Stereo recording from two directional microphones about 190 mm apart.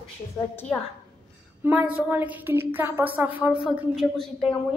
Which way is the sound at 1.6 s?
10° right (ahead or behind).